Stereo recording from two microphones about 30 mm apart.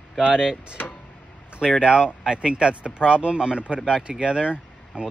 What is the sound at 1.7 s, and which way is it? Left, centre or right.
Speech, right.